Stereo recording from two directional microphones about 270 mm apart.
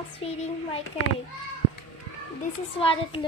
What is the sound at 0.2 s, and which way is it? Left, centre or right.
Speech, left.